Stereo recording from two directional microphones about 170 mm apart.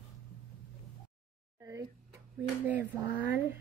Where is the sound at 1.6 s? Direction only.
20° right (ahead or behind).